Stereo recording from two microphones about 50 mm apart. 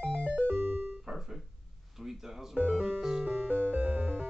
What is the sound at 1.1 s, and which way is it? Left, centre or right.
Music, centre.